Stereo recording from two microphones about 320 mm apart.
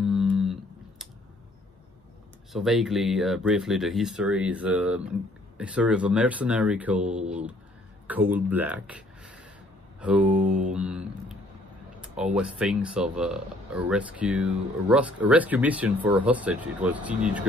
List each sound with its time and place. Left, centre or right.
0.0 s a sound: centre
2.5 s speech: centre
10.3 s mantra: right
10.7 s mantra: centre
12.0 s speech: centre